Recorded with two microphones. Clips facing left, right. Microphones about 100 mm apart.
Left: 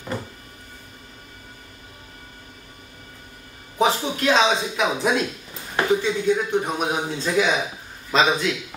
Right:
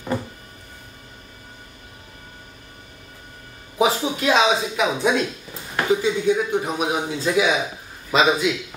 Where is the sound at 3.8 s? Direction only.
10° right (ahead or behind).